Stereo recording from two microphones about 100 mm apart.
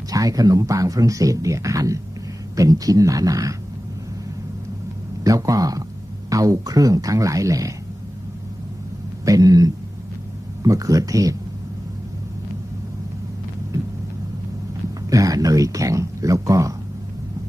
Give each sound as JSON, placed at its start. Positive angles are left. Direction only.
{"t": 0.1, "sound": "speech", "side_deg": -35}
{"t": 5.2, "sound": "speech", "side_deg": -35}
{"t": 9.2, "sound": "speech", "side_deg": -35}
{"t": 15.0, "sound": "speech", "side_deg": -35}